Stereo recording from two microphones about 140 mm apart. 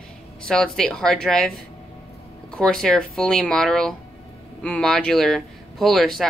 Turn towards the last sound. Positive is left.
turn(degrees=0)  # may be behind; listen again after turning